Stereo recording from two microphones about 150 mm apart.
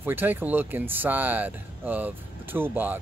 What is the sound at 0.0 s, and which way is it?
Speech, 15° right (ahead or behind).